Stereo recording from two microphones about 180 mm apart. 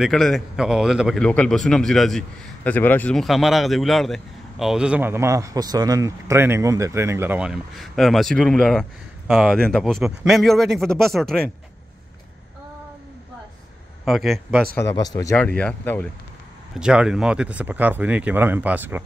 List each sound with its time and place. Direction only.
0.0 s speech: centre (ahead or behind)
14.0 s speech: centre (ahead or behind)
14.8 s speech: 20° left (ahead or behind)
15.3 s speech: 5° left (ahead or behind)
16.7 s speech: 5° right (ahead or behind)